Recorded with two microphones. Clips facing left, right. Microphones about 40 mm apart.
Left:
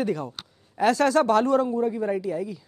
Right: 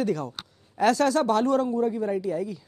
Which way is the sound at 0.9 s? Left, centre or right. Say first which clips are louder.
Left 3 dB; left.